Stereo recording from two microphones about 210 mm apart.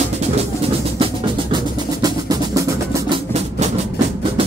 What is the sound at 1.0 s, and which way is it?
Percussion, 20° right (ahead or behind).